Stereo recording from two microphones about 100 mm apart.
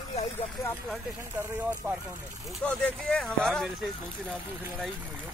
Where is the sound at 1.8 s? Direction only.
20° right (ahead or behind).